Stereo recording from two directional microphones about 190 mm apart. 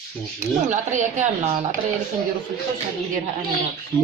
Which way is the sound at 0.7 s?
40° right (ahead or behind).